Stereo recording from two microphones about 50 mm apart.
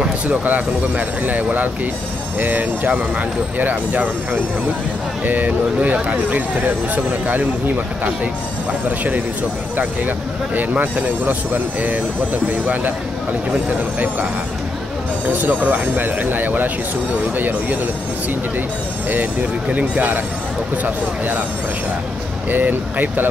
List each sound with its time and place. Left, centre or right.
0.3 s speech: right
9.8 s speech: right
15.2 s speech: right
19.7 s speech: right
22.5 s speech: right